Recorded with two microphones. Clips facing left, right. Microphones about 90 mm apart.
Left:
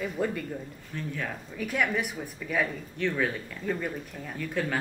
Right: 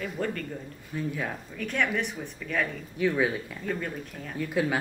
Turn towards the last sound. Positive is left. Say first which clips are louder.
# right 3 dB
turn(degrees=-10)  # may be behind; listen again after turning